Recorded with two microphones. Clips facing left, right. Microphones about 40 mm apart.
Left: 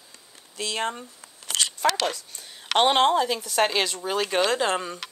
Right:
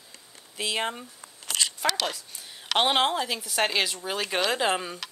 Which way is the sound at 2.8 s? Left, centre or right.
Centre.